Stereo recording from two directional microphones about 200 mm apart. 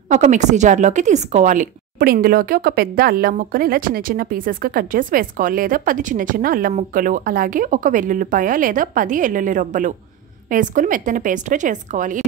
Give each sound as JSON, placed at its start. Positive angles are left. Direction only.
{"t": 0.1, "sound": "a woman's voice", "side_deg": -35}